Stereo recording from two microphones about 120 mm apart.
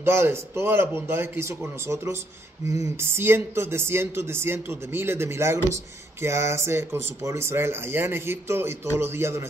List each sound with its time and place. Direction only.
0.0 s speech: 20° right (ahead or behind)